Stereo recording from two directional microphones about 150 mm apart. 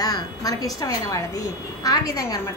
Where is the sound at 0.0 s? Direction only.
25° left (ahead or behind).